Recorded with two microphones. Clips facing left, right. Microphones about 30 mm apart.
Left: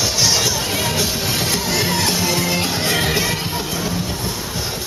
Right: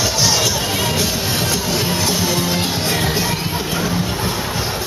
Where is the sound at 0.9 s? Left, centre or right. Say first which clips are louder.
Right 1 dB; right.